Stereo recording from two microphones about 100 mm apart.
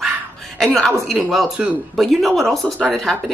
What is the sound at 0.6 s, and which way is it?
Speech, 5° left (ahead or behind).